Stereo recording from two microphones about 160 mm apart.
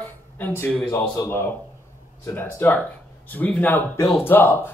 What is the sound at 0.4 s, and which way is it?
A man's voice, 10° left (ahead or behind).